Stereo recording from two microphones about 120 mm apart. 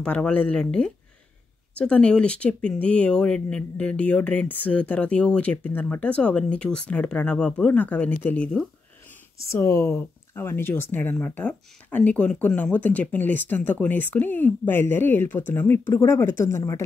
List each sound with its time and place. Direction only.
0.0 s speech: 10° left (ahead or behind)
9.5 s speech: 25° left (ahead or behind)